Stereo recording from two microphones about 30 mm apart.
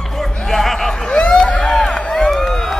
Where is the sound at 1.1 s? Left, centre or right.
Left.